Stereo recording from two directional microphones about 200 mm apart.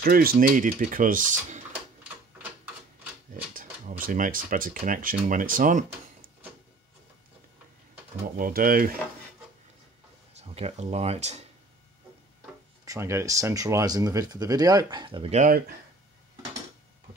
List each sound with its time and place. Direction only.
0.0 s speech: 50° right (ahead or behind)
3.8 s speech: 40° right (ahead or behind)
8.4 s speech: 45° right (ahead or behind)
10.3 s speech: 30° right (ahead or behind)
12.8 s speech: 15° right (ahead or behind); by 15.6 s 35° right (ahead or behind)